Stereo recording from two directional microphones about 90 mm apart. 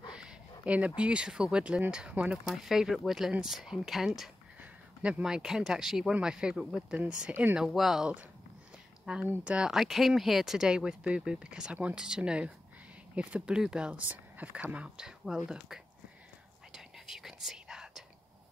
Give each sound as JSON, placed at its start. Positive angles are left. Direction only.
{"t": 0.1, "sound": "speech", "side_deg": -10}
{"t": 2.4, "sound": "speech", "side_deg": 0}
{"t": 4.6, "sound": "a sound", "side_deg": -20}
{"t": 5.2, "sound": "speech", "side_deg": -5}
{"t": 16.7, "sound": "whispering", "side_deg": -5}